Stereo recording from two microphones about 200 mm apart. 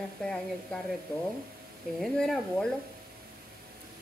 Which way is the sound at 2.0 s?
Centre (ahead or behind).